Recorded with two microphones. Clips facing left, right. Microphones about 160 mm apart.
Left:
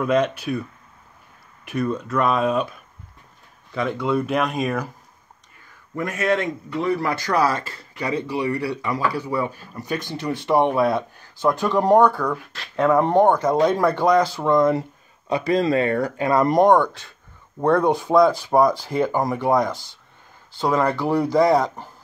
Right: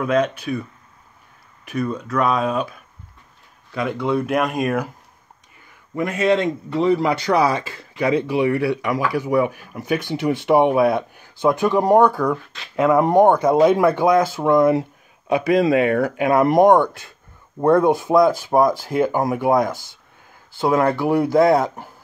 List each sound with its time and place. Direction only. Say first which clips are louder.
0.0 s speech: right 1 dB; centre (ahead or behind)
1.7 s speech: even; 5° left (ahead or behind)
3.7 s speech: right 1 dB; 5° right (ahead or behind)
5.9 s speech: right 4 dB; 20° right (ahead or behind)